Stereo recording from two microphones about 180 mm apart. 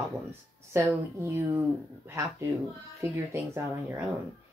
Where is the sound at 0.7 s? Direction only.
15° right (ahead or behind).